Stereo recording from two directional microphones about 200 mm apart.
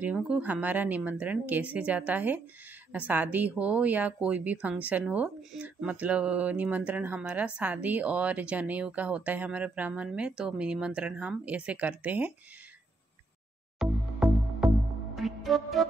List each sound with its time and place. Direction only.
0.0 s speech: 5° right (ahead or behind)
13.7 s music: 5° right (ahead or behind)